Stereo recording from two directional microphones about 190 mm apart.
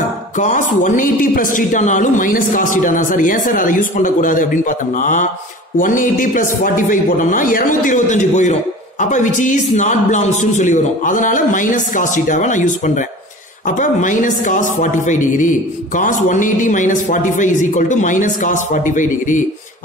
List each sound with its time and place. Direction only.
0.4 s a man's voice: 40° left (ahead or behind)